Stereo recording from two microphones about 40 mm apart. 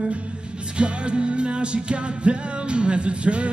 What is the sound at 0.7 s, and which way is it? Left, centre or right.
Music, right.